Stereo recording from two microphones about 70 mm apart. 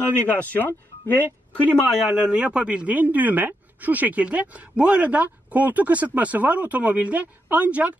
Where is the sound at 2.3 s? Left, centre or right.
Centre.